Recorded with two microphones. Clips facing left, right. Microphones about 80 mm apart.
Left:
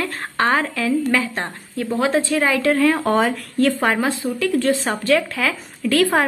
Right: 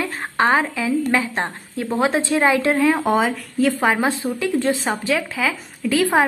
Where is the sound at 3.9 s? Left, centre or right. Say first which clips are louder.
Even; right.